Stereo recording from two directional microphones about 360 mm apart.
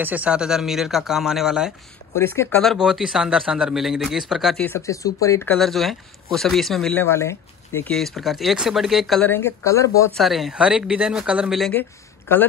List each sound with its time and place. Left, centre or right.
0.0 s speech: centre